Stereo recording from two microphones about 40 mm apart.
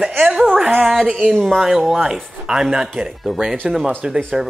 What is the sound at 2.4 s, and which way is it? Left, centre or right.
Speech, right.